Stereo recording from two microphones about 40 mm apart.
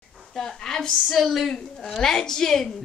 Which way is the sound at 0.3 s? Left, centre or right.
Centre.